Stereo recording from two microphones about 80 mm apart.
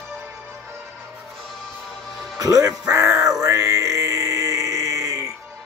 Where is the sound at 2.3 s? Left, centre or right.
Right.